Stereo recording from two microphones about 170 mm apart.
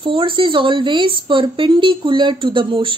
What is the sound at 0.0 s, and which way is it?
Speech, 30° right (ahead or behind).